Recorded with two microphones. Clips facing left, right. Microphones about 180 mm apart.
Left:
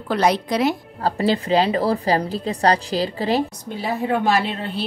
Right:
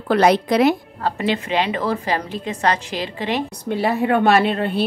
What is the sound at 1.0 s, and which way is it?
A woman's voice, 35° left (ahead or behind).